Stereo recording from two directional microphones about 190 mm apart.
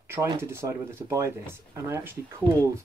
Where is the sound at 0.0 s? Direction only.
15° right (ahead or behind).